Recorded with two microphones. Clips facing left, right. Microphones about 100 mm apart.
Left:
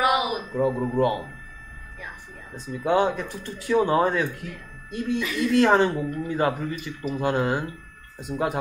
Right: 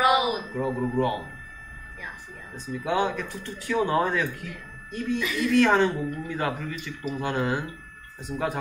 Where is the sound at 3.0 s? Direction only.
20° left (ahead or behind).